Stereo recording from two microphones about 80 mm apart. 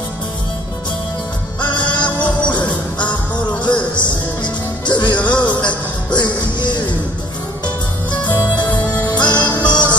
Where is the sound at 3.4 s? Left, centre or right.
Centre.